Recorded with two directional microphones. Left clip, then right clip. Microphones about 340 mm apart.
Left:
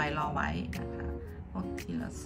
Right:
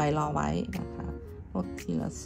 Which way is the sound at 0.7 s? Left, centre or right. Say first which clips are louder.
Even; centre.